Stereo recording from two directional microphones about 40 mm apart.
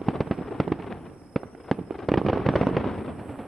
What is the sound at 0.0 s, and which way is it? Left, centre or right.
Fireworks, centre.